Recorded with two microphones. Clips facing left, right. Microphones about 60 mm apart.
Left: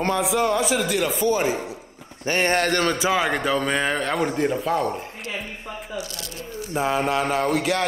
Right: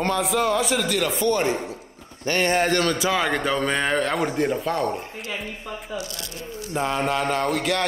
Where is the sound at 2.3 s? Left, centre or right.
Left.